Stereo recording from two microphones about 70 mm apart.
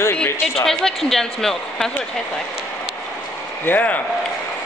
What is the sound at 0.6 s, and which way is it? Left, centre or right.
A man's voice, centre.